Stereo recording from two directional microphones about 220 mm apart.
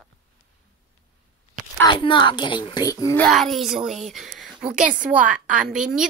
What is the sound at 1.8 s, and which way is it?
Speech, 20° left (ahead or behind).